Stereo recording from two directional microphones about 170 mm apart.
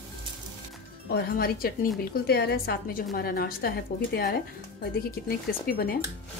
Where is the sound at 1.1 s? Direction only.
60° left (ahead or behind).